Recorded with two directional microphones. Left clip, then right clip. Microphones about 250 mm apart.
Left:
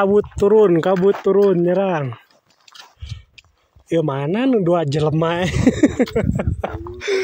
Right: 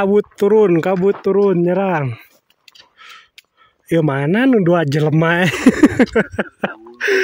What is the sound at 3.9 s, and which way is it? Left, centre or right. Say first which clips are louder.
Speech: right 3 dB; centre.